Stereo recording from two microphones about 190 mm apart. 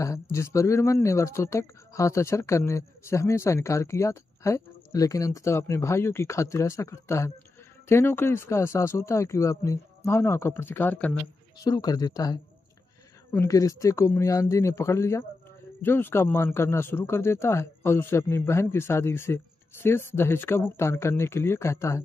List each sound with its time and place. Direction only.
0.0 s speech: 15° left (ahead or behind)
11.6 s speech: 20° left (ahead or behind)